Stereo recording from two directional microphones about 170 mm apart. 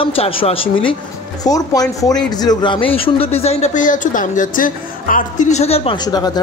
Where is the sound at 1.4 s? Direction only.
20° left (ahead or behind); by 5.9 s 35° left (ahead or behind).